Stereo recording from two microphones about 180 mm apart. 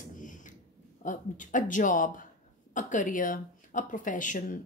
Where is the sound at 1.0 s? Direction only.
45° left (ahead or behind).